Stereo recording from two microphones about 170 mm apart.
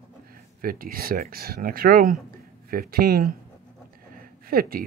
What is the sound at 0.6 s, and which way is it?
Speech, 55° right (ahead or behind).